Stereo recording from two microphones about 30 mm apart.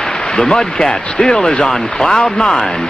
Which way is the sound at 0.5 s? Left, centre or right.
Left.